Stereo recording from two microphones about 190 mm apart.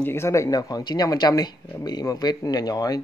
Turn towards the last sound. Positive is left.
turn(degrees=20)  # may be behind; listen again after turning